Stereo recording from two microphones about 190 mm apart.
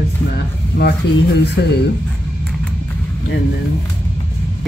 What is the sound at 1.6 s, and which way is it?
Speech, 65° left (ahead or behind).